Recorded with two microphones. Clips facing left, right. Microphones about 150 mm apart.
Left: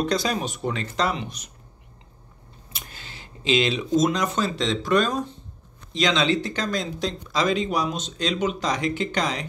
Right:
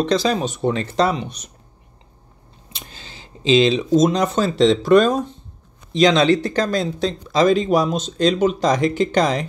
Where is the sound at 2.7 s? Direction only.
25° right (ahead or behind); by 9.4 s 40° right (ahead or behind).